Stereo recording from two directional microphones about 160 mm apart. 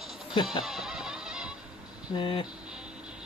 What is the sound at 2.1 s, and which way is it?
Speech, 30° left (ahead or behind).